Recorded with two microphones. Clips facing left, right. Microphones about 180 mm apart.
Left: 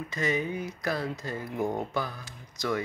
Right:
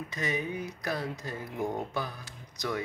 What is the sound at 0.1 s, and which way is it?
Speech, 15° right (ahead or behind).